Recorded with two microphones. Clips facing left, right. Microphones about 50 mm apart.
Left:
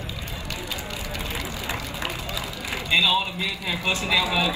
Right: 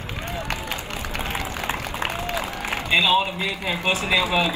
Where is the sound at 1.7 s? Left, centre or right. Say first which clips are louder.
Right 3 dB; right.